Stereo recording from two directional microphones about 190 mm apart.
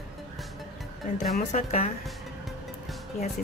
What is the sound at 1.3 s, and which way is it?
Speech, 35° left (ahead or behind).